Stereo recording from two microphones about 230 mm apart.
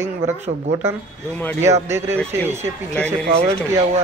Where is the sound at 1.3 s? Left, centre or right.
Centre.